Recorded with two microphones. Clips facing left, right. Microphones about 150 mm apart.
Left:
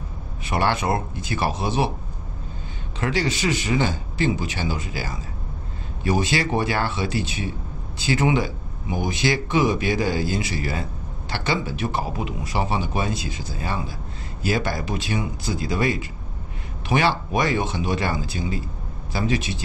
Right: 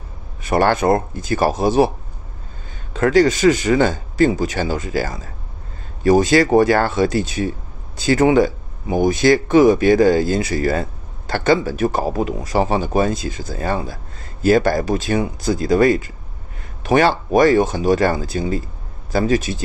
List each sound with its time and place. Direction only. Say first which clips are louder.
0.4 s speech: right 7 dB; 45° right (ahead or behind)
2.9 s speech: right 10 dB; 45° right (ahead or behind)